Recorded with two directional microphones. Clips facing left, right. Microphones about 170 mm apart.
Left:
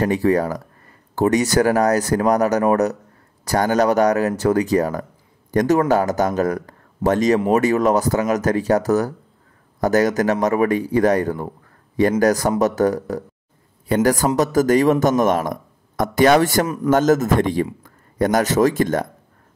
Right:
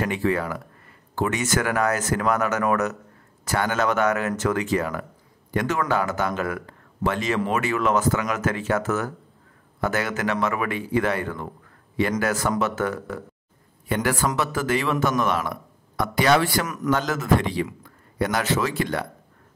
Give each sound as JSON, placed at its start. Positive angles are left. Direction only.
{"t": 0.0, "sound": "a man's voice", "side_deg": 40}
{"t": 16.6, "sound": "a man's voice", "side_deg": 30}
{"t": 16.9, "sound": "a man's voice", "side_deg": 45}